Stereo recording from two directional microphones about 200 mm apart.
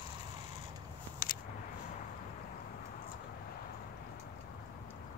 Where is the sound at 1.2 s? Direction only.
45° left (ahead or behind).